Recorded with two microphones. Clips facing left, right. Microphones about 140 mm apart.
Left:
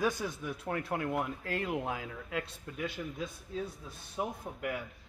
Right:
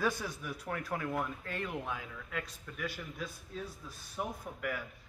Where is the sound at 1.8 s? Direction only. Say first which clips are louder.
Left 4 dB; 35° left (ahead or behind).